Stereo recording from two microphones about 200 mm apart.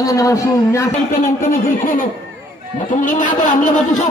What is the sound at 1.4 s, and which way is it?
A man's voice, 45° left (ahead or behind).